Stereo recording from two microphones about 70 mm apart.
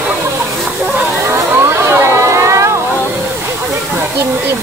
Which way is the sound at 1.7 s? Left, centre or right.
Right.